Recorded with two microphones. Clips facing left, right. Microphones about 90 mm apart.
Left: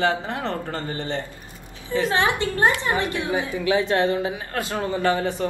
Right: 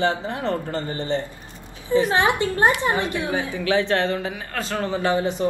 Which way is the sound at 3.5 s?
15° left (ahead or behind).